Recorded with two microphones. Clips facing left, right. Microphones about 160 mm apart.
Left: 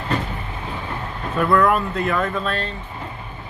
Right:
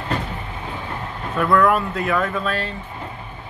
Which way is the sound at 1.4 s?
5° left (ahead or behind).